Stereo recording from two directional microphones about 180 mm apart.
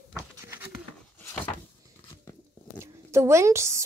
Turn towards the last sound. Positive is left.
turn(degrees=-15)  # may be behind; listen again after turning